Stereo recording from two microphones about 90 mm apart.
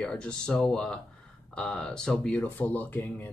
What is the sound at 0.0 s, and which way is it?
Speech, 10° left (ahead or behind).